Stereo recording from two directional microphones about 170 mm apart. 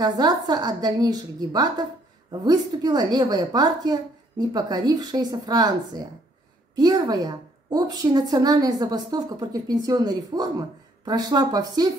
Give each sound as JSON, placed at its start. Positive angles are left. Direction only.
{"t": 0.0, "sound": "a woman's voice", "side_deg": -25}